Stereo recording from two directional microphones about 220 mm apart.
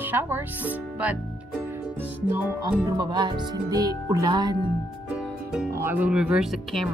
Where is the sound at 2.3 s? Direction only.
10° right (ahead or behind).